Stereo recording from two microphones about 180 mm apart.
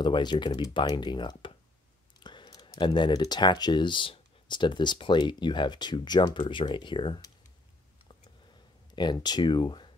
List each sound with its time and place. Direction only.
0.0 s speech: 25° left (ahead or behind)
8.9 s speech: 25° left (ahead or behind)